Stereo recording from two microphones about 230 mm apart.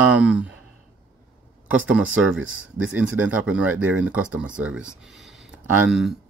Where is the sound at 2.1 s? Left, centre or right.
Right.